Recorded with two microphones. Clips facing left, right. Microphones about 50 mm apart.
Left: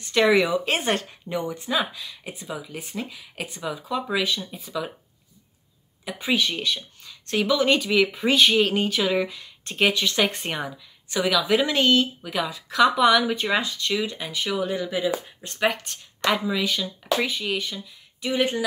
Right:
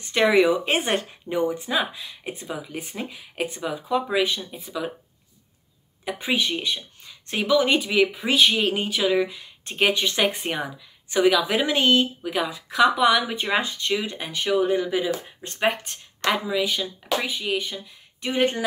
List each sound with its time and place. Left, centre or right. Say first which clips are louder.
0.0 s speech: right 1 dB; right
6.0 s speech: right 1 dB; right
6.6 s speech: left 1 dB; right
8.2 s speech: left 1 dB; centre
9.3 s speech: even; centre
11.1 s speech: right 2 dB; right
16.3 s speech: even; centre
17.7 s speech: right 1 dB; right